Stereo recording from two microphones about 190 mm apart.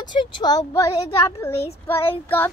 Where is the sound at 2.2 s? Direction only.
10° left (ahead or behind).